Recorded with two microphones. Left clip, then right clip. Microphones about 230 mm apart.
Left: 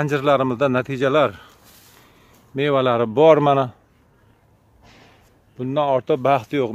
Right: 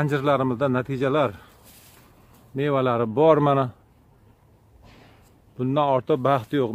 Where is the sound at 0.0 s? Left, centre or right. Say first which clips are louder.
Left 4 dB; centre.